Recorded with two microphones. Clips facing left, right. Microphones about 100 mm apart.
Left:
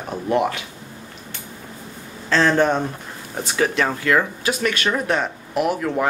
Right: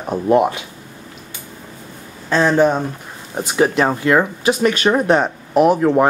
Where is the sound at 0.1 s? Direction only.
25° right (ahead or behind).